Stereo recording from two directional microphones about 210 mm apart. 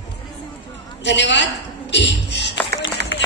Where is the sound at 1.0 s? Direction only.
55° left (ahead or behind).